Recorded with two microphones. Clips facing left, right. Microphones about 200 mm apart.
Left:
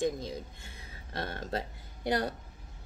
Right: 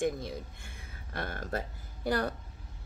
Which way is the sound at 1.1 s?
30° left (ahead or behind).